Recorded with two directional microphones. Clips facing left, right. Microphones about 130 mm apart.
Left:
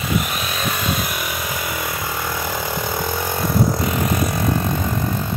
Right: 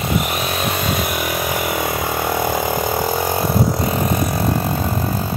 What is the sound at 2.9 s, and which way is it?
Vehicle, 35° right (ahead or behind).